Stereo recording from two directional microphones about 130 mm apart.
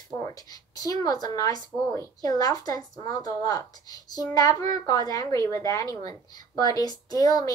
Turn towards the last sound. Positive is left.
turn(degrees=30)  # may be behind; listen again after turning